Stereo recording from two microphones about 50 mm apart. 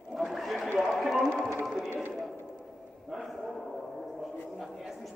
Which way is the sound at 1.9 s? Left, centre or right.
Right.